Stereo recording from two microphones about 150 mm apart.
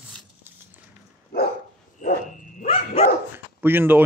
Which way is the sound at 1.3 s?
90° left.